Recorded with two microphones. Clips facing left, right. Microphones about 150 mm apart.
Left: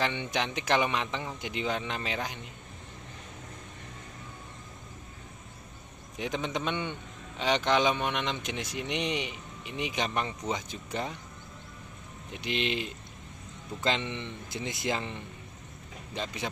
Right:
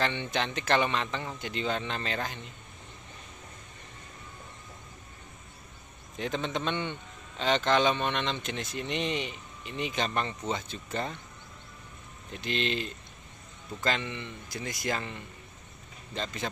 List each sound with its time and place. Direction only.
0.0 s a man's voice: 10° left (ahead or behind)
6.1 s a man's voice: 10° left (ahead or behind)
12.3 s a man's voice: 15° left (ahead or behind)